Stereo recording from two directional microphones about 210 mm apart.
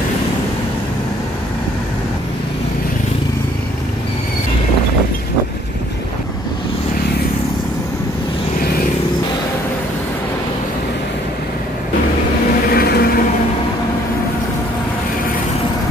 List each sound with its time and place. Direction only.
12.7 s vehicle: 45° left (ahead or behind)